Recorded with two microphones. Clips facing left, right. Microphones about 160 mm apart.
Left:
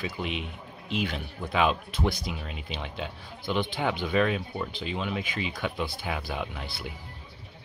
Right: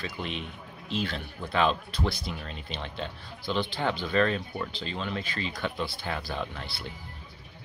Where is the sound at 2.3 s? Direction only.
5° left (ahead or behind).